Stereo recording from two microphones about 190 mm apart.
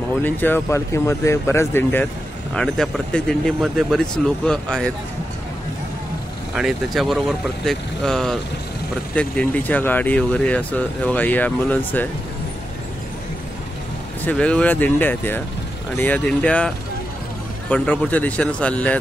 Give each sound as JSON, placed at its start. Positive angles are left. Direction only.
{"t": 0.2, "sound": "speech", "side_deg": 10}
{"t": 6.5, "sound": "speech", "side_deg": 0}
{"t": 14.2, "sound": "speech", "side_deg": 5}